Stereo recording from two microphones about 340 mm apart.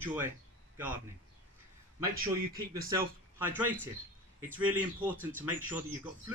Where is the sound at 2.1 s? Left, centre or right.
Right.